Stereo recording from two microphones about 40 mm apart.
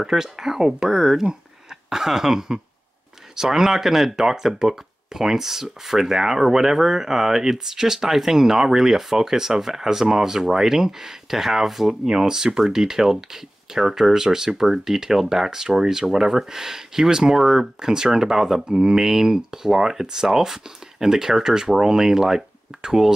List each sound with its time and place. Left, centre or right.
0.0 s speech: centre
17.7 s speech: centre